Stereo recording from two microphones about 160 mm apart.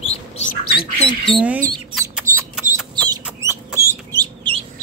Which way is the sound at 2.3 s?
55° right (ahead or behind).